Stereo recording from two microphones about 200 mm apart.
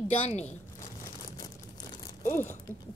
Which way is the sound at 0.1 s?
30° left (ahead or behind).